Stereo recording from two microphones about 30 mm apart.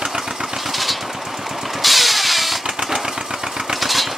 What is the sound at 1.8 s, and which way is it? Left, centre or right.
Vehicle, centre.